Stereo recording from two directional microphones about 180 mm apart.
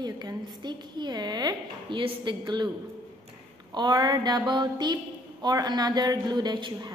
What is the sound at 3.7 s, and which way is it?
A woman's voice, 25° right (ahead or behind).